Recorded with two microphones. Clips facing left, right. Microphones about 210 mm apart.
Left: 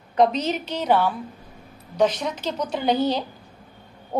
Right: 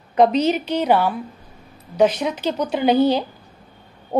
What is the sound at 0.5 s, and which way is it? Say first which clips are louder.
Speech: right 6 dB; 60° right (ahead or behind).